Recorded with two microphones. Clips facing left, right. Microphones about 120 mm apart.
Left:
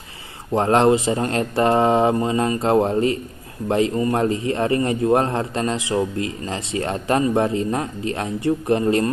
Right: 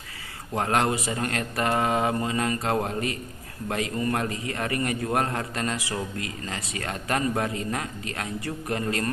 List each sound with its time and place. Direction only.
0.5 s a man's voice: 30° left (ahead or behind)